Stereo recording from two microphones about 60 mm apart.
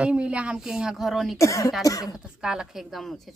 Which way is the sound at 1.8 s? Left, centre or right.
Left.